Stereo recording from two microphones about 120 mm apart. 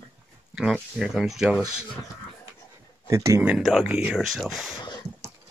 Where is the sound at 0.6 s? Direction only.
5° right (ahead or behind).